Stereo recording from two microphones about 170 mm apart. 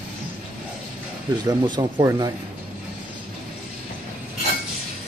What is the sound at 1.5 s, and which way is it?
Speech, 25° right (ahead or behind).